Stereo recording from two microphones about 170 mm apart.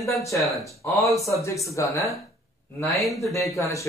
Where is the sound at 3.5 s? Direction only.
20° left (ahead or behind).